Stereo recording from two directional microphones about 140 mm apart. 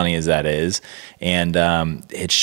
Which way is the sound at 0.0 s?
20° right (ahead or behind).